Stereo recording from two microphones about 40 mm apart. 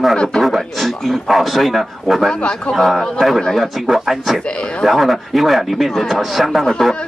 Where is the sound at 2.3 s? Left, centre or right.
Left.